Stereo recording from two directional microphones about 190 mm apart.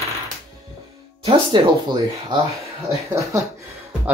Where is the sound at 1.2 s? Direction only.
25° right (ahead or behind).